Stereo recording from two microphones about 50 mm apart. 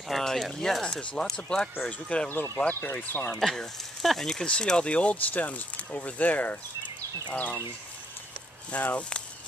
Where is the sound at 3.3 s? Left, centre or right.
Centre; by 7.6 s left.